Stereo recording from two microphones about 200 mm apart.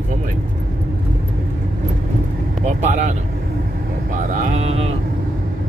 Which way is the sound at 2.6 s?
35° right (ahead or behind).